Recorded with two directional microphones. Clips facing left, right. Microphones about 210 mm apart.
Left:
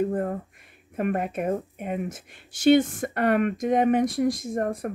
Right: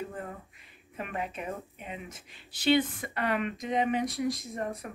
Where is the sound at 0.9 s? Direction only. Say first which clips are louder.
Left 10 dB; 50° left (ahead or behind).